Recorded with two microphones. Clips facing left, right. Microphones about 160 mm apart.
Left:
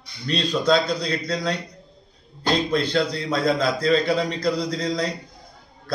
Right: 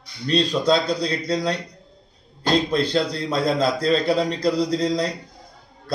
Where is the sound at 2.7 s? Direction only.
30° right (ahead or behind).